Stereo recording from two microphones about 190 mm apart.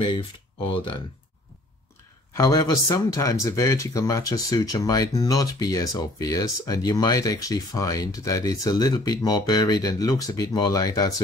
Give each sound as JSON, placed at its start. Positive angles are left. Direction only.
{"t": 0.7, "sound": "speech", "side_deg": 25}
{"t": 2.3, "sound": "speech", "side_deg": 15}